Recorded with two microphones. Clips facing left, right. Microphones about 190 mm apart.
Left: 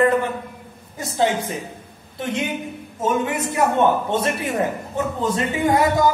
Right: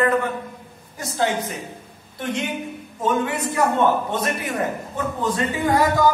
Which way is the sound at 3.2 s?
20° left (ahead or behind).